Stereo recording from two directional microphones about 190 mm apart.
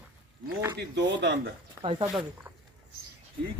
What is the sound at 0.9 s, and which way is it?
Speech, 65° right (ahead or behind).